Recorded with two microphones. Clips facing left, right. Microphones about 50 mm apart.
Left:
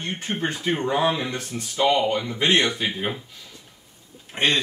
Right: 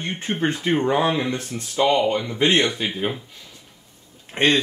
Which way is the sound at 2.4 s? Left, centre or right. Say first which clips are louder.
Right 1 dB; centre.